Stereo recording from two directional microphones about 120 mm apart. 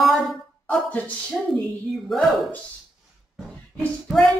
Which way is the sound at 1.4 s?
Centre (ahead or behind).